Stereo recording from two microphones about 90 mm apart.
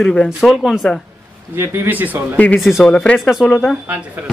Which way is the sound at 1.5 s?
30° right (ahead or behind).